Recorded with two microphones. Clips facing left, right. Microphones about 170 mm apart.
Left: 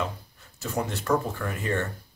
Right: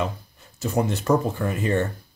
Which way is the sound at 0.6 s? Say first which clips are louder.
Right 6 dB; 20° right (ahead or behind).